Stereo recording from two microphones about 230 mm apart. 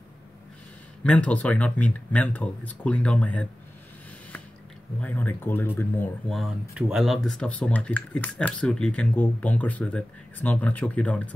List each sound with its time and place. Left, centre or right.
1.0 s speech: centre
5.0 s speech: centre